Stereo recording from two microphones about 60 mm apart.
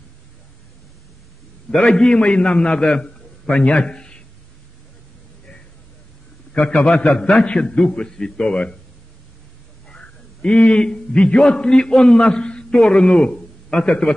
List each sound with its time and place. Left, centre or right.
1.9 s a man's voice: centre
3.4 s a man's voice: left
6.5 s a man's voice: centre
9.8 s a man's voice: centre